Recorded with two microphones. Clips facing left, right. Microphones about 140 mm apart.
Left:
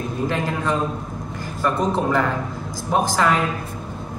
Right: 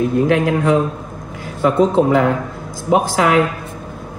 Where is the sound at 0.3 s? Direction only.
80° right.